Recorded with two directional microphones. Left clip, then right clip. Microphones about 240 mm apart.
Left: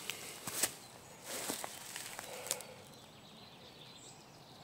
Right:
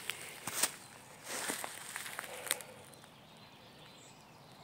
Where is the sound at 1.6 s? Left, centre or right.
Centre.